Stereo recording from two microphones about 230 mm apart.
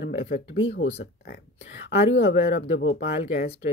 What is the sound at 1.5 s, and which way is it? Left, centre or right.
Speech, left.